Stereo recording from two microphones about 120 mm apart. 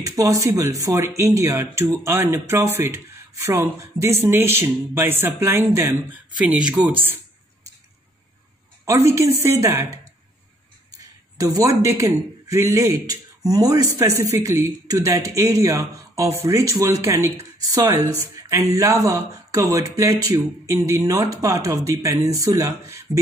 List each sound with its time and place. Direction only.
0.0 s a man's voice: 25° right (ahead or behind)
8.8 s a man's voice: 25° right (ahead or behind)
11.0 s a man's voice: 30° right (ahead or behind)